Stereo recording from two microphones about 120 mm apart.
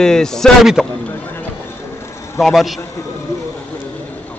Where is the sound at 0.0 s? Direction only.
5° left (ahead or behind).